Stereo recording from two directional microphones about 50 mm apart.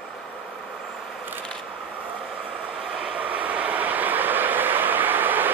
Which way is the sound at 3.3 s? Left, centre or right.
Right.